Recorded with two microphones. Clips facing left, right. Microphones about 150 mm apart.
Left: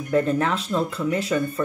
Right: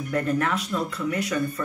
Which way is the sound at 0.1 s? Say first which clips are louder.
Left 4 dB; 25° left (ahead or behind).